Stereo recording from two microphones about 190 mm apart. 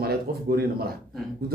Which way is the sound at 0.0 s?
55° right (ahead or behind).